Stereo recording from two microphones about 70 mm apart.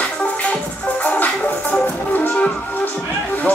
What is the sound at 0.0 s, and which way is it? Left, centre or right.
Music, centre.